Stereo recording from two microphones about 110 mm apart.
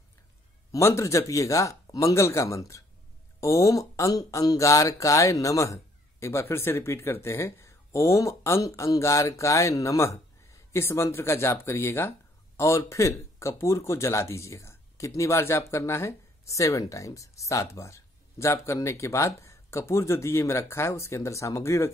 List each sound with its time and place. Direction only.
0.7 s speech: 25° left (ahead or behind)